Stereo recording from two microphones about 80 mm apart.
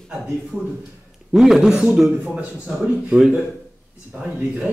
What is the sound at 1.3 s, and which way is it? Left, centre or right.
A man's voice, centre.